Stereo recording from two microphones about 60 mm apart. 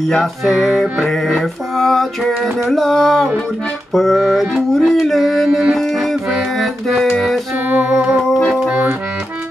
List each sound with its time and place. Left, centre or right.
0.1 s music: centre
1.4 s a sound: centre
2.7 s music: centre
4.7 s a sound: centre
5.8 s music: centre
7.6 s music: right